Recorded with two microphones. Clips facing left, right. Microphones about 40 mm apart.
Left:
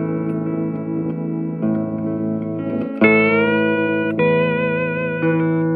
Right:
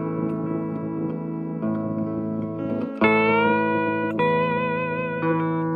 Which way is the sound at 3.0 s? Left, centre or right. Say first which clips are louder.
Left 4 dB; centre.